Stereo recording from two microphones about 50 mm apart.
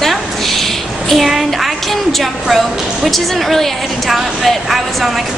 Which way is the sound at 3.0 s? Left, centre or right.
Centre.